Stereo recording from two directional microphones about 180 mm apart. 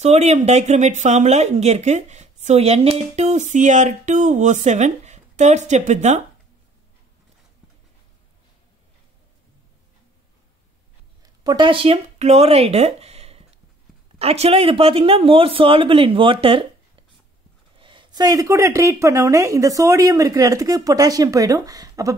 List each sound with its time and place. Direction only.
0.0 s speech: 40° right (ahead or behind)
11.2 s speech: 25° right (ahead or behind)